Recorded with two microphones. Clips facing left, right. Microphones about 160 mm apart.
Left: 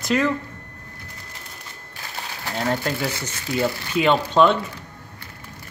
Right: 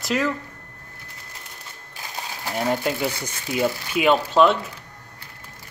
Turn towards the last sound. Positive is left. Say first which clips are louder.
# even
turn(degrees=-5)  # may be behind; listen again after turning